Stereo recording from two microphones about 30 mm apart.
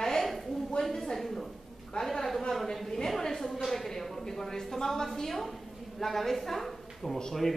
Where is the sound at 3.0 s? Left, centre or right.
Centre.